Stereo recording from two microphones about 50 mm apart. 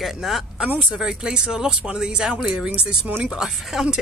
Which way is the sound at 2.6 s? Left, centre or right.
Right.